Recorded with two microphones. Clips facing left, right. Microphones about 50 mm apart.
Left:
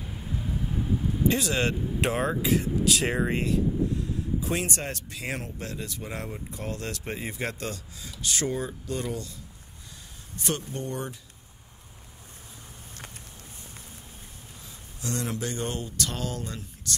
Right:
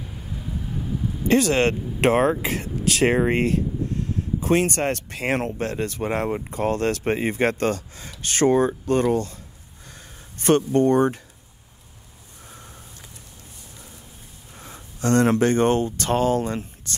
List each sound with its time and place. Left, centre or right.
0.0 s vehicle: centre
1.3 s speech: right
14.6 s speech: right